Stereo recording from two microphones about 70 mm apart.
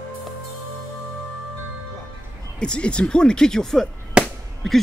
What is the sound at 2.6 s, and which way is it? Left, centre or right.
Speech, centre.